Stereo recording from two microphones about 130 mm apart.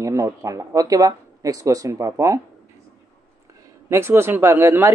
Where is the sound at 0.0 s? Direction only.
25° right (ahead or behind).